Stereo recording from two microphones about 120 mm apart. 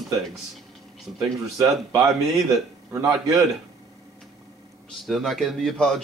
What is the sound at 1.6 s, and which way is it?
Speech, 30° right (ahead or behind).